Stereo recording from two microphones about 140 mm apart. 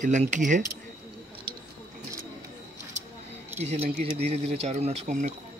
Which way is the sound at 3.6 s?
50° right (ahead or behind).